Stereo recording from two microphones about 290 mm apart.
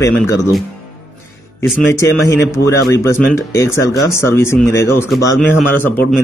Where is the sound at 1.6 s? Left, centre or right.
Centre.